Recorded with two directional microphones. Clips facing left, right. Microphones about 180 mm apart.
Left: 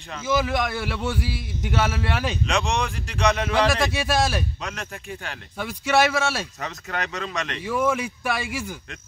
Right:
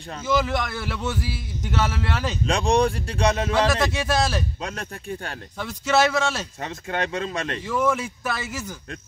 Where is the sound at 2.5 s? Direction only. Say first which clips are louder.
Right 8 dB; 35° right (ahead or behind).